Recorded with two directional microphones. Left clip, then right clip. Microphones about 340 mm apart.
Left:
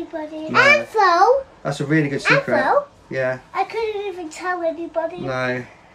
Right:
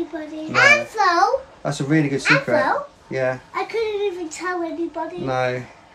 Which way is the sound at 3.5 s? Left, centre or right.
Centre.